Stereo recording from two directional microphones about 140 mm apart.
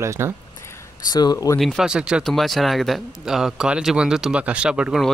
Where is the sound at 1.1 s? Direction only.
25° left (ahead or behind).